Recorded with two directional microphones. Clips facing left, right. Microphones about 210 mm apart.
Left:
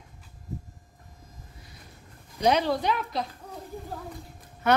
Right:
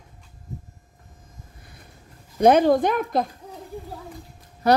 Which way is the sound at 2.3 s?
50° right (ahead or behind).